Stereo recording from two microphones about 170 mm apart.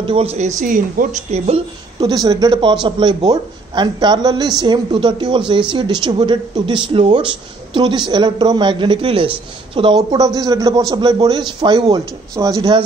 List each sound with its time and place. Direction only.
0.0 s speech: 35° right (ahead or behind)
0.6 s a woman's voice: 50° right (ahead or behind)
2.0 s a man's voice: 20° right (ahead or behind)